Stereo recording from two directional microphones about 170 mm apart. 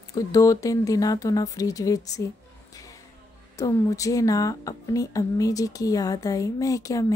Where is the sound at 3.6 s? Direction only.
20° left (ahead or behind).